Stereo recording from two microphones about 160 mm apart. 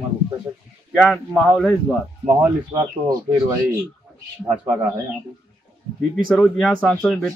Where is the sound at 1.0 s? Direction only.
5° left (ahead or behind).